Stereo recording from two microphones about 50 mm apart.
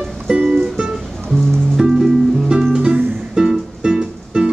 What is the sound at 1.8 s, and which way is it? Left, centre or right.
Music, centre.